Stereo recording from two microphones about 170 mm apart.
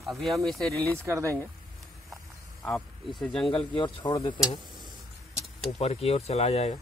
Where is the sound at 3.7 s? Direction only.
25° left (ahead or behind).